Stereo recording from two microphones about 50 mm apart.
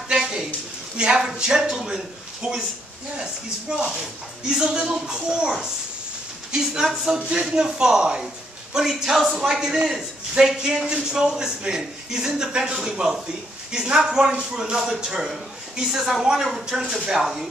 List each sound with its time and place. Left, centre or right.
0.1 s a sound: centre
0.9 s a man's voice: centre
3.2 s a man's voice: centre
7.2 s a man's voice: right